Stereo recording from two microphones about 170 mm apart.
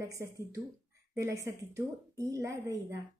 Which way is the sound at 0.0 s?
20° right (ahead or behind).